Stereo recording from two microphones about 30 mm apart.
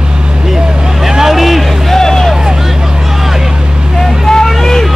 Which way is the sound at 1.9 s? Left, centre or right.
Centre.